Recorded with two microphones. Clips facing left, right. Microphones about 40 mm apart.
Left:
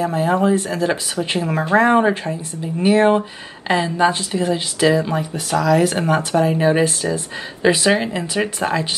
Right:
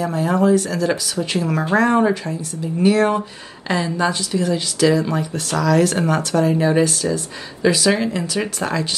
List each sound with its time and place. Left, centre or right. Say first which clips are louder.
0.0 s speech: left 1 dB; left